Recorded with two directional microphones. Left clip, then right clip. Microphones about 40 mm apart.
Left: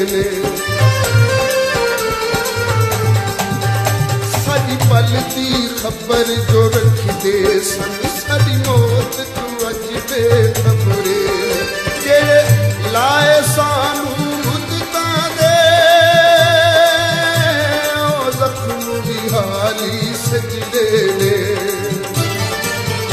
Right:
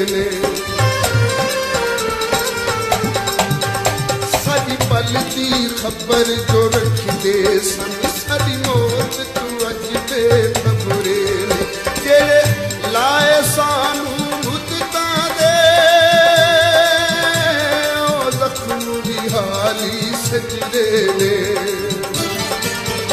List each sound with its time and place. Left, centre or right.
0.0 s music: centre
5.6 s music: centre
10.1 s music: centre
15.0 s music: left
20.3 s music: centre